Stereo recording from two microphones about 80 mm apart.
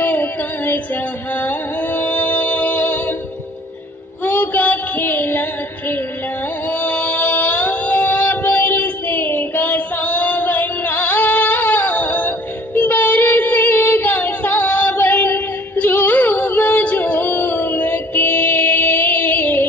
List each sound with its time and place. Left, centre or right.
0.0 s music: left
4.2 s child singing: left
6.7 s music: left